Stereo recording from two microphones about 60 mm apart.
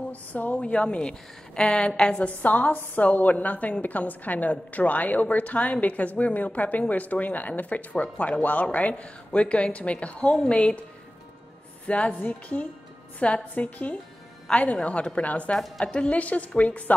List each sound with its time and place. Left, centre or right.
0.1 s a woman's voice: left
11.8 s a woman's voice: left